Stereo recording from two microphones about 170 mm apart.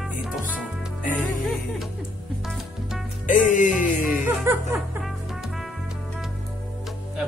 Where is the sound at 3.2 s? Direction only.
50° left (ahead or behind).